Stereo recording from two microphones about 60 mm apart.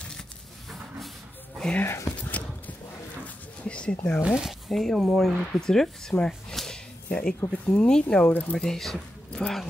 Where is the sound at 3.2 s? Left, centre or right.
Left.